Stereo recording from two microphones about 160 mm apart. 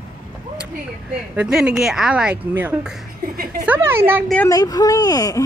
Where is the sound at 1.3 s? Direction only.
5° right (ahead or behind).